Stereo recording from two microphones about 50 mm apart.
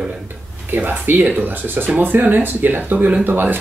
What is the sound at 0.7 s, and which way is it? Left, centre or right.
Speech, right.